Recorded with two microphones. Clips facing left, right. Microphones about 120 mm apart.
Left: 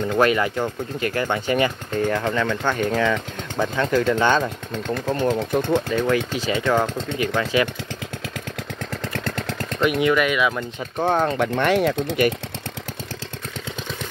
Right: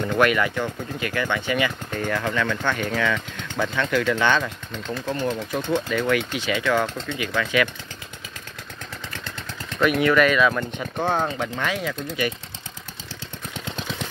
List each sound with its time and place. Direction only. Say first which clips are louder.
0.2 s speech: left 1 dB; 30° left (ahead or behind)
5.0 s speech: left 4 dB; 30° left (ahead or behind)
9.2 s a sound: left 8 dB; 55° left (ahead or behind)
9.8 s speech: right 1 dB; 20° left (ahead or behind)
11.1 s speech: left 5 dB; 55° left (ahead or behind)